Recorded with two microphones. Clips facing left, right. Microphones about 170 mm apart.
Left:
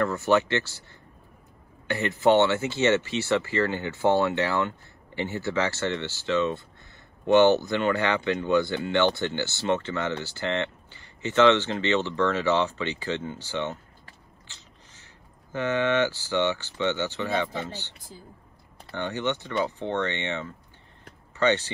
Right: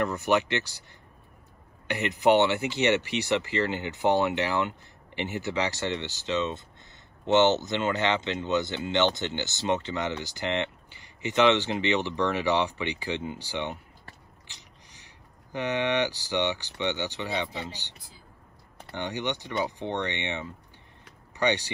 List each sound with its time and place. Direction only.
0.0 s speech: 15° right (ahead or behind)
1.9 s speech: 15° right (ahead or behind)
14.5 s a sound: 15° right (ahead or behind)
15.5 s speech: 15° right (ahead or behind)